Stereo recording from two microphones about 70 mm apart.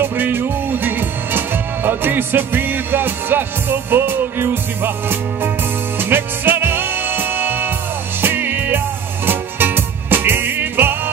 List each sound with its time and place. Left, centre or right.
0.0 s music: right